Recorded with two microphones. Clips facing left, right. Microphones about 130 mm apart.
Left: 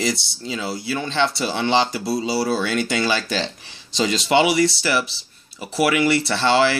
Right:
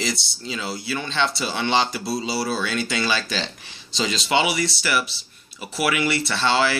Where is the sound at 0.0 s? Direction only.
40° left (ahead or behind).